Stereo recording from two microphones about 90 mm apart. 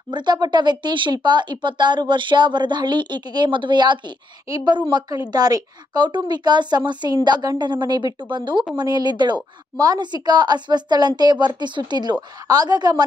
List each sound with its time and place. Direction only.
0.1 s speech: 55° right (ahead or behind)
4.5 s a woman's voice: 40° right (ahead or behind)
4.7 s speech: 60° right (ahead or behind)
5.3 s a woman's voice: 45° right (ahead or behind)
8.7 s a woman's voice: 50° right (ahead or behind)